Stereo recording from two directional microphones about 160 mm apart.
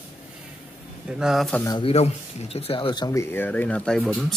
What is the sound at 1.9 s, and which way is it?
Speech, 40° left (ahead or behind).